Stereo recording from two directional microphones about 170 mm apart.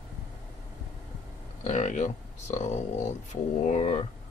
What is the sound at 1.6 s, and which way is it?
Speech, 45° left (ahead or behind).